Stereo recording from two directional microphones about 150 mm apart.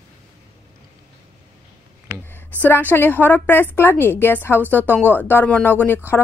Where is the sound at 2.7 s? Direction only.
10° left (ahead or behind).